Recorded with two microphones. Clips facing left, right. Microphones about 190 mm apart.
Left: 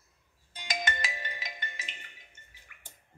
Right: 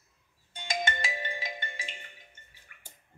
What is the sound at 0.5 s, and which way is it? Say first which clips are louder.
Music: right 2 dB; 25° right (ahead or behind).